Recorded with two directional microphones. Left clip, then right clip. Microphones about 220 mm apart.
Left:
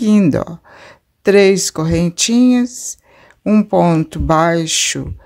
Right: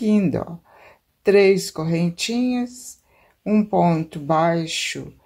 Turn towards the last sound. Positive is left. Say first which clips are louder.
# left 8 dB
turn(degrees=30)  # may be behind; listen again after turning